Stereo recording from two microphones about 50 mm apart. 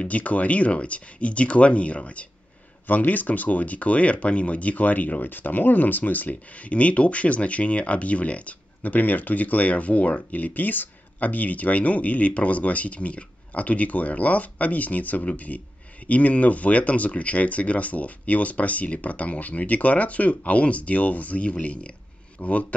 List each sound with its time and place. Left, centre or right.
0.0 s speech: left